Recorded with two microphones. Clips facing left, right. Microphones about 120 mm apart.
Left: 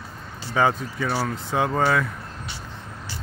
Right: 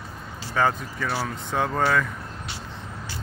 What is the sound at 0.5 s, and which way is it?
Speech, 5° left (ahead or behind).